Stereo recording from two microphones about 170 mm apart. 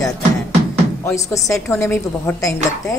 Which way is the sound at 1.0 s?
20° left (ahead or behind).